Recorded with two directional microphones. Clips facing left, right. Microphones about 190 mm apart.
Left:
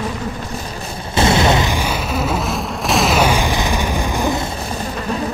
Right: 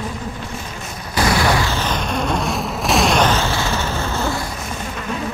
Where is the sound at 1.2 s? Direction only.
25° left (ahead or behind).